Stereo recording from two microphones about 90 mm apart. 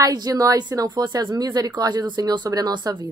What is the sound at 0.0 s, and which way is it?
A woman's voice, 45° right (ahead or behind).